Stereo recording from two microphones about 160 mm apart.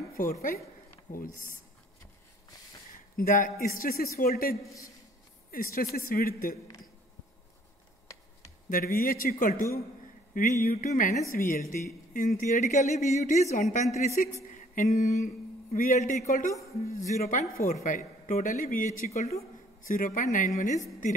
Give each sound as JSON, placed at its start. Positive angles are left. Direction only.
{"t": 0.2, "sound": "speech", "side_deg": 60}
{"t": 2.9, "sound": "speech", "side_deg": 65}
{"t": 8.6, "sound": "speech", "side_deg": 65}
{"t": 11.3, "sound": "a woman's voice", "side_deg": 65}
{"t": 14.2, "sound": "speech", "side_deg": 55}
{"t": 14.5, "sound": "a sound", "side_deg": 50}
{"t": 16.9, "sound": "speech", "side_deg": 50}
{"t": 19.9, "sound": "speech", "side_deg": 55}